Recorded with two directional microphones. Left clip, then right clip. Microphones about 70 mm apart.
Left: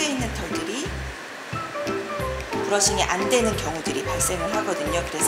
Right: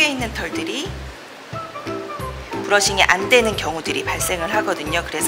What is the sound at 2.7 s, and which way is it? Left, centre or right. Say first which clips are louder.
Speech: right 7 dB; right.